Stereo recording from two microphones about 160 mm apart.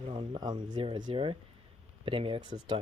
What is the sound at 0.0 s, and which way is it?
Speech, 30° right (ahead or behind).